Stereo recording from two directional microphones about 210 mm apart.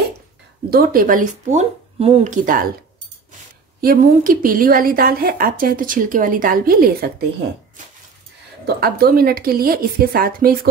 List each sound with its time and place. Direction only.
0.7 s speech: 45° right (ahead or behind)
3.8 s speech: 45° right (ahead or behind)
8.6 s speech: 50° right (ahead or behind)